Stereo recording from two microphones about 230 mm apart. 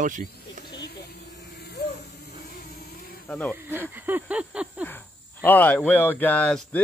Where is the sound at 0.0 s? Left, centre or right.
Right.